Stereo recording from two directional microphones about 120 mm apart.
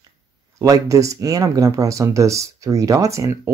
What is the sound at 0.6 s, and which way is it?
Speech, 25° right (ahead or behind).